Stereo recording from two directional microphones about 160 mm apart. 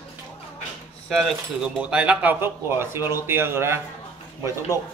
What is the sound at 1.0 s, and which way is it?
A man's voice, centre (ahead or behind).